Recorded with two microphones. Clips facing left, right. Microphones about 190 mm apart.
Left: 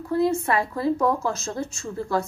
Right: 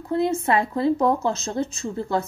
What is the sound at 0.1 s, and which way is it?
Speech, 25° right (ahead or behind).